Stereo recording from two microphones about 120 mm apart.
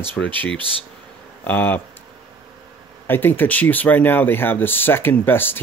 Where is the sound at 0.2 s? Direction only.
5° left (ahead or behind).